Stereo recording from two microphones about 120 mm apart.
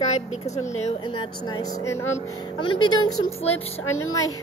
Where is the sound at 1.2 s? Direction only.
40° left (ahead or behind); by 2.1 s 25° left (ahead or behind).